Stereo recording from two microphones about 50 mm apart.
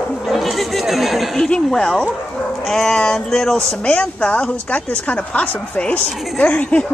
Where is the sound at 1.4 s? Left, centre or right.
Centre.